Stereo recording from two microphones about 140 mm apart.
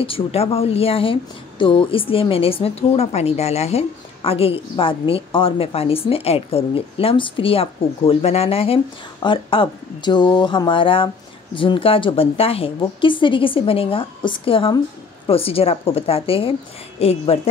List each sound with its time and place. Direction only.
0.0 s a woman's voice: 40° left (ahead or behind)